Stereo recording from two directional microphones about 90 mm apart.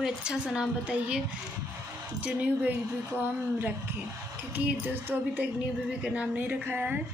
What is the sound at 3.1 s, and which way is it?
Speech, 25° right (ahead or behind).